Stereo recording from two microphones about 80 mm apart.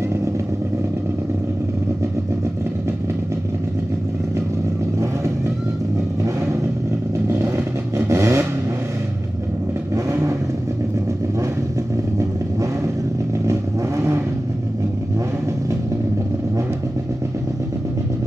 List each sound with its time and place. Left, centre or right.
8.1 s vehicle: right
13.5 s vehicle: right